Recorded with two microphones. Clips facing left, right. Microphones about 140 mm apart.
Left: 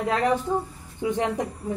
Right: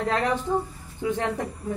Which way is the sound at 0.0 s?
10° left (ahead or behind).